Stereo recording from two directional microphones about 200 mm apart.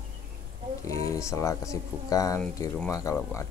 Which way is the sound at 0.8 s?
15° left (ahead or behind).